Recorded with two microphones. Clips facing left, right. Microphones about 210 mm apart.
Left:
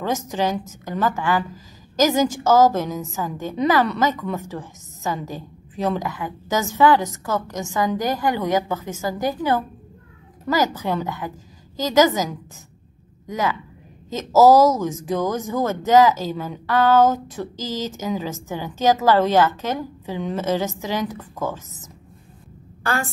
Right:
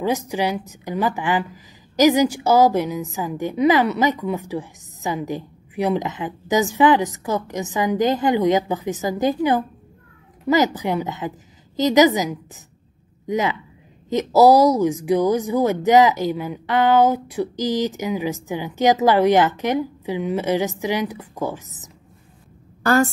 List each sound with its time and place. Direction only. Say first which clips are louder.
0.0 s a woman's voice: right 1 dB; 10° right (ahead or behind)